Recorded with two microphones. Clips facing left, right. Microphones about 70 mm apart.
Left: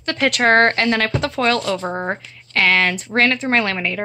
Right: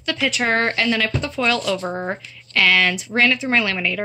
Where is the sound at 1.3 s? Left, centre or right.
Left.